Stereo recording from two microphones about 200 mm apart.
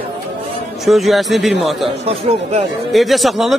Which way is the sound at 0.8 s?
Centre (ahead or behind).